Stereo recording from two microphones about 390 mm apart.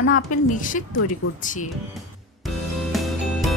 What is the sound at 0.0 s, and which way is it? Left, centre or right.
Speech, left.